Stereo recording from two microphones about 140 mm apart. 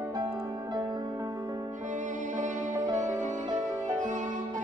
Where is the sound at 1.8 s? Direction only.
65° right (ahead or behind).